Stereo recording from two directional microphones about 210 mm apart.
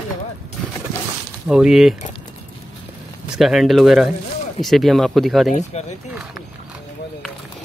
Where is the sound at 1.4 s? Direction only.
5° right (ahead or behind).